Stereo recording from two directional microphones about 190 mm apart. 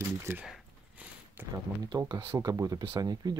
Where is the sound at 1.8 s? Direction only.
20° right (ahead or behind).